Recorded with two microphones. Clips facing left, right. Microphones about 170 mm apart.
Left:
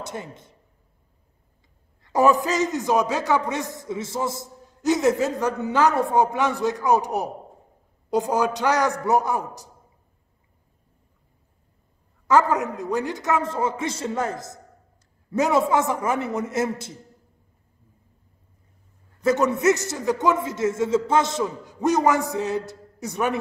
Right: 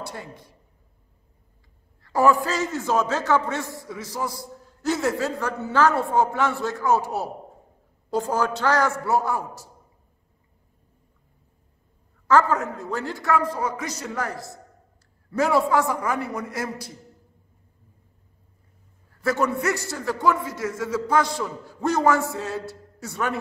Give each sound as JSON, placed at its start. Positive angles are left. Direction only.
{"t": 0.0, "sound": "a man's voice", "side_deg": 20}
{"t": 2.0, "sound": "a man's voice", "side_deg": 20}
{"t": 12.3, "sound": "a man's voice", "side_deg": 15}
{"t": 19.2, "sound": "a man's voice", "side_deg": 20}